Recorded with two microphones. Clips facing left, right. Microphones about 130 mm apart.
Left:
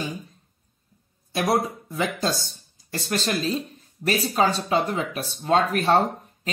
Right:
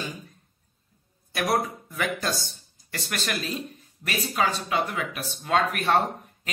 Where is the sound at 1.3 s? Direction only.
25° left (ahead or behind).